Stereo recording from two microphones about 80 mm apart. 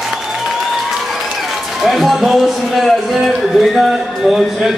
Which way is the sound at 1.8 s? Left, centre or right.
Centre.